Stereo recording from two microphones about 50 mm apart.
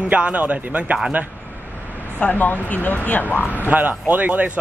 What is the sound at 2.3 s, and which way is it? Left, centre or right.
Speech, left.